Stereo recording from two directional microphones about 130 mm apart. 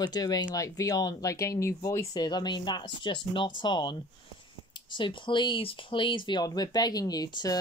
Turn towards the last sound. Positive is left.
turn(degrees=30)  # may be behind; listen again after turning